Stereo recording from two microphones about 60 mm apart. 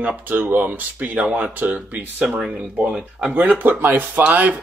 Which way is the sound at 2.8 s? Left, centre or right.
Centre.